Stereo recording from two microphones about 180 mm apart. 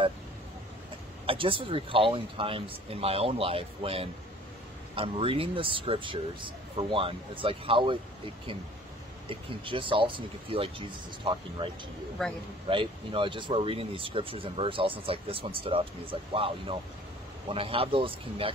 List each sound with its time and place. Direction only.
1.2 s speech: 30° right (ahead or behind)
9.3 s speech: 30° right (ahead or behind)